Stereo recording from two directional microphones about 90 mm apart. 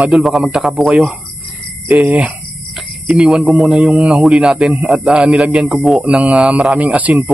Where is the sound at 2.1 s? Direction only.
15° right (ahead or behind).